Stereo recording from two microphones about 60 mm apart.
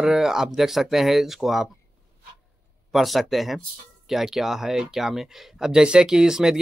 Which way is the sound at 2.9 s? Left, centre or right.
Centre.